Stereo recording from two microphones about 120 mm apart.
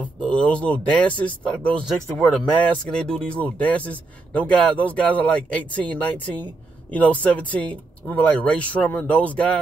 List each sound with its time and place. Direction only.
0.0 s a man's voice: 10° left (ahead or behind)